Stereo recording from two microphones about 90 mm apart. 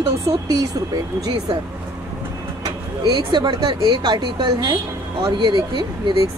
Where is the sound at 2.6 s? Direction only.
55° right (ahead or behind).